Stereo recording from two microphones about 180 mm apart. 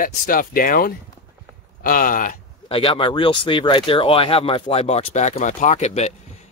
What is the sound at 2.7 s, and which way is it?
Speech, 30° left (ahead or behind).